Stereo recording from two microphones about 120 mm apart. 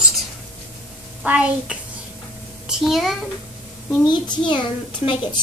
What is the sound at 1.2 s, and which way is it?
Speech, 10° right (ahead or behind).